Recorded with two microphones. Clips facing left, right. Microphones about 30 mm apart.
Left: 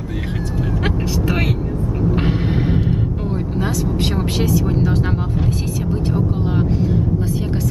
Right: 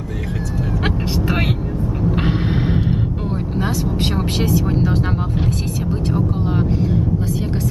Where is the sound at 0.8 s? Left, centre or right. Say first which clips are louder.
Even; centre.